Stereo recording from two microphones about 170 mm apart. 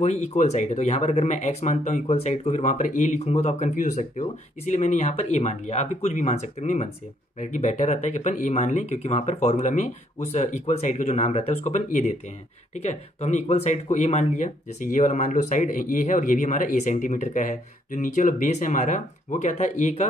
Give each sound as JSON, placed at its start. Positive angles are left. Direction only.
{"t": 0.0, "sound": "speech", "side_deg": 40}